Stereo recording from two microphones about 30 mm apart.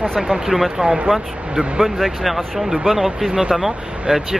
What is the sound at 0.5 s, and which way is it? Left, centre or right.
Speech, centre.